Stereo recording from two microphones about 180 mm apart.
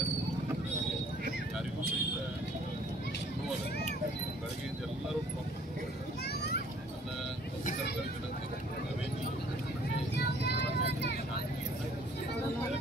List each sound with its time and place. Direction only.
6.2 s children playing: 65° left (ahead or behind)
10.1 s vehicle: 65° left (ahead or behind)